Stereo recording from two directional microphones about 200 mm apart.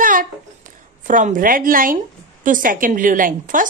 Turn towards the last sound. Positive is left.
turn(degrees=-45)  # may be behind; listen again after turning